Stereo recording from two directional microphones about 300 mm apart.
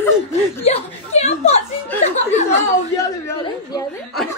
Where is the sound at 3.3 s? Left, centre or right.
Centre.